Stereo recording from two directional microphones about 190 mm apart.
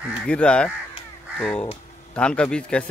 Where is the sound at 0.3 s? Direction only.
5° left (ahead or behind).